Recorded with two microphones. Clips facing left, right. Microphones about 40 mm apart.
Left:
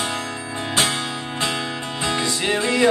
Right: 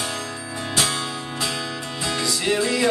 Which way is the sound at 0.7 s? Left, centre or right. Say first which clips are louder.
Left 2 dB; left.